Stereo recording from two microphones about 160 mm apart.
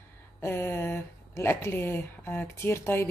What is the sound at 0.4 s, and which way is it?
Speech, 15° left (ahead or behind).